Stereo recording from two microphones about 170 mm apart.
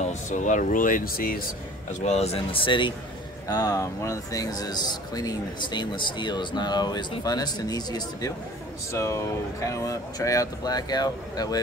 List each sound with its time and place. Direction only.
0.0 s speech: 45° left (ahead or behind); by 1.4 s 60° left (ahead or behind)
2.0 s speech: 40° left (ahead or behind)
3.4 s speech: 20° left (ahead or behind)